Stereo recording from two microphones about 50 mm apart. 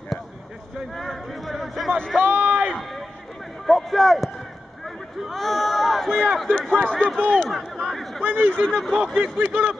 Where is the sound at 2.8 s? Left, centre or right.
Centre.